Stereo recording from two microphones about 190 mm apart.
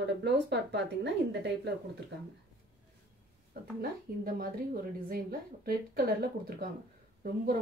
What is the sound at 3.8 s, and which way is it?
A woman's voice, 50° right (ahead or behind).